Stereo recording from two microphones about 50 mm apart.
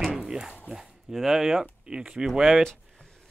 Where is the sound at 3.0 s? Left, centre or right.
Centre.